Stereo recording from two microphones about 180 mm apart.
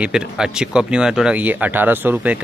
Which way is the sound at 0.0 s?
5° right (ahead or behind).